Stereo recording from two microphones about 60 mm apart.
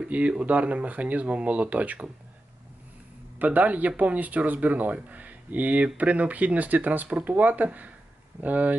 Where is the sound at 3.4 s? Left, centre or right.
Right.